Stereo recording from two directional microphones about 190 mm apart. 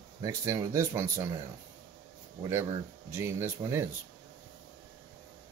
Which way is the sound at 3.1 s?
15° right (ahead or behind).